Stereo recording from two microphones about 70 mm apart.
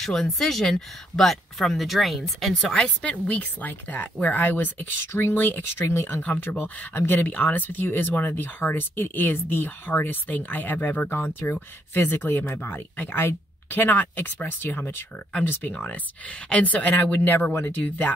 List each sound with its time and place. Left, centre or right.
0.0 s speech: centre; by 18.1 s left